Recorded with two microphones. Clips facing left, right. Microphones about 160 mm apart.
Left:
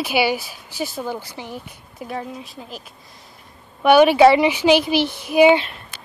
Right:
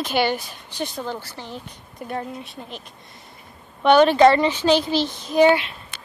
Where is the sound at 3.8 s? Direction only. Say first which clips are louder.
Left 2 dB; 10° left (ahead or behind).